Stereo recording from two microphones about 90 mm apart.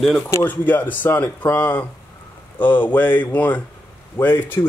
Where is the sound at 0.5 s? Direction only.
20° left (ahead or behind).